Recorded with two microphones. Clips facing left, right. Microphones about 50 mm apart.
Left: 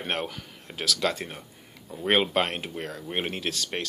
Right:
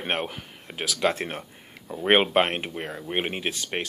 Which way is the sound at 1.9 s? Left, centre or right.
Right.